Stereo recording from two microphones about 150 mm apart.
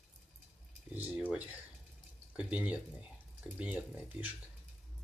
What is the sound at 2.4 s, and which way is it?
Speech, 10° right (ahead or behind).